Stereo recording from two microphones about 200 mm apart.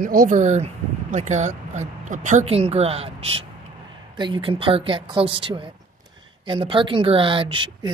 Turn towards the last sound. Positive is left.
turn(degrees=-25)  # may be behind; listen again after turning